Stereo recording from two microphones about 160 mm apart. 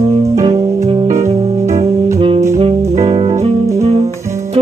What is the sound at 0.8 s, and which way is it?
Music, 40° right (ahead or behind).